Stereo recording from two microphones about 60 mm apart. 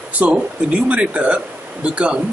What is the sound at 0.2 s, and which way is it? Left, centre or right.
Speech, right.